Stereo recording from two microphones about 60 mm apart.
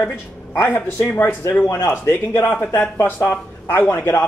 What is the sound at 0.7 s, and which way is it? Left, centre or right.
Speech, left.